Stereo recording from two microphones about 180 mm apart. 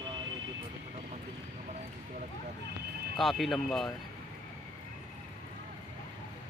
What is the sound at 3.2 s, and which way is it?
Speech, centre (ahead or behind).